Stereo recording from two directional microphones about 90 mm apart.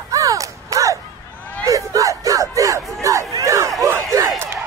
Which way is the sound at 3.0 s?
40° right (ahead or behind).